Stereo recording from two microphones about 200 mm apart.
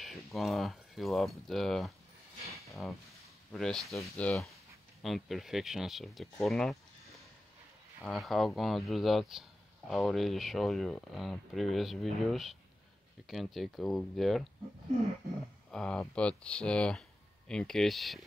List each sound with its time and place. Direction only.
0.0 s speech: centre (ahead or behind)
2.6 s a sound: centre (ahead or behind)
4.0 s speech: 5° left (ahead or behind)
6.4 s a sound: centre (ahead or behind)
8.0 s speech: centre (ahead or behind)
15.7 s speech: 5° left (ahead or behind)